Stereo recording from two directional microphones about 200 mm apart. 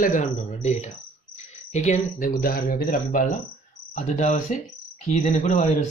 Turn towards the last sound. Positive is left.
turn(degrees=35)  # may be behind; listen again after turning